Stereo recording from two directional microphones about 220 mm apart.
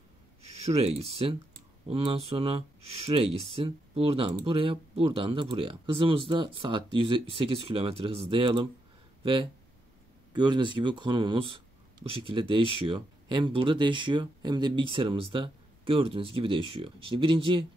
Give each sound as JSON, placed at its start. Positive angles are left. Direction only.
{"t": 0.7, "sound": "speech", "side_deg": -25}
{"t": 10.3, "sound": "speech", "side_deg": -20}